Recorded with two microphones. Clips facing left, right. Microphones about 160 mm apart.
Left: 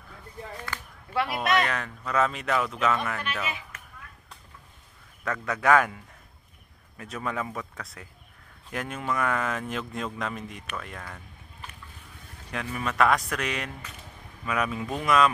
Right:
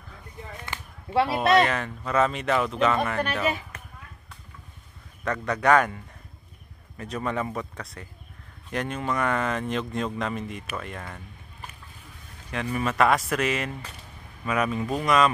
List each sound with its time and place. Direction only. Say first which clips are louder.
0.7 s a sound: right 1 dB; 30° right (ahead or behind)
1.7 s speech: right 3 dB; centre (ahead or behind)
3.4 s speech: right 9 dB; 40° right (ahead or behind)
5.2 s speech: right 2 dB; centre (ahead or behind)
7.0 s speech: right 3 dB; centre (ahead or behind)
12.4 s speech: right 4 dB; centre (ahead or behind)